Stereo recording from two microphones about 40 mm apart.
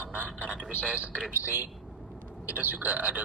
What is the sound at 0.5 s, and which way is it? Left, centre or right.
Speech, right.